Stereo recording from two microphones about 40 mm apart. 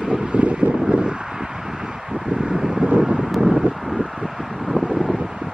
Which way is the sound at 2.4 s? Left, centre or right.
Centre.